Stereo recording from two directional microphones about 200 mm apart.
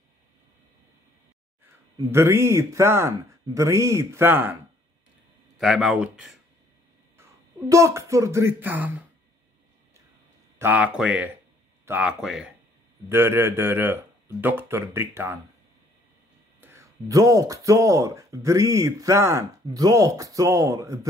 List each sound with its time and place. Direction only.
2.0 s speech: 15° right (ahead or behind)
5.6 s speech: centre (ahead or behind)
7.7 s speech: 15° right (ahead or behind)
10.6 s speech: 5° right (ahead or behind)
16.6 s speech: 15° right (ahead or behind)